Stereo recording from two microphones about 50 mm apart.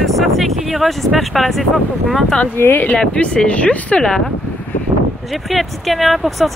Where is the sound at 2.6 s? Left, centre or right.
Left.